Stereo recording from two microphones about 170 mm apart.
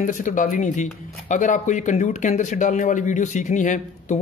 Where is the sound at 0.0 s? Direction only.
50° left (ahead or behind).